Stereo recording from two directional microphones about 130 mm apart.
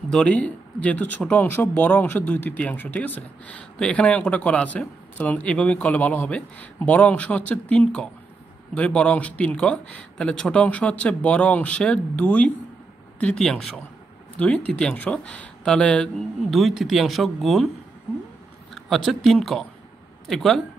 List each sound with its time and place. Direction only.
0.1 s speech: 10° left (ahead or behind)
18.8 s speech: centre (ahead or behind)